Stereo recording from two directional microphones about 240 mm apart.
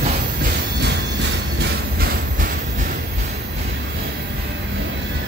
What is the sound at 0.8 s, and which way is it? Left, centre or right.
Train, right.